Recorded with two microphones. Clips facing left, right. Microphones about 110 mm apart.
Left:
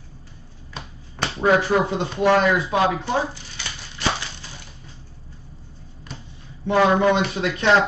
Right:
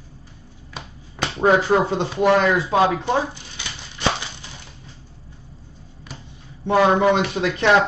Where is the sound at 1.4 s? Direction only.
25° right (ahead or behind).